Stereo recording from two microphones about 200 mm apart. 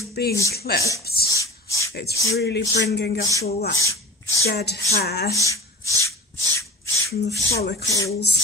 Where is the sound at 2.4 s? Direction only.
60° left (ahead or behind).